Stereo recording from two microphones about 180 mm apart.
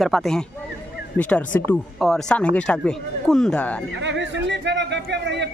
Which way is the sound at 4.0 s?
90° right.